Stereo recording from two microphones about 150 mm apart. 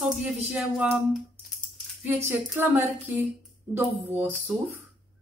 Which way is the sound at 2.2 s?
15° right (ahead or behind).